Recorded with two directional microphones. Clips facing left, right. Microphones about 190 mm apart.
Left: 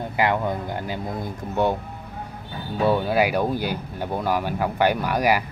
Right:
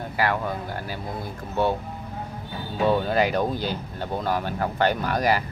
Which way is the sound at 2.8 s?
10° left (ahead or behind).